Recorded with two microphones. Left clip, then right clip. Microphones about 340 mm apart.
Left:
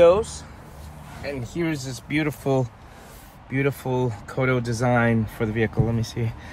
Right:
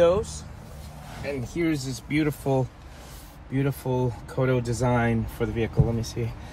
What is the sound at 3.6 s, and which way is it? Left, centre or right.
Speech, left.